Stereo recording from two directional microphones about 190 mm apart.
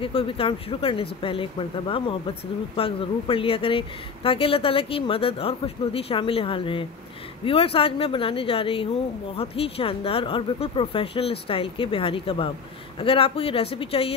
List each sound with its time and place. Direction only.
0.0 s speech: 30° left (ahead or behind)